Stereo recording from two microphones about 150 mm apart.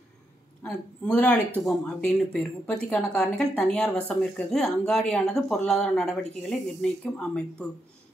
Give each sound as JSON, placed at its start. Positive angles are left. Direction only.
{"t": 0.7, "sound": "speech", "side_deg": 10}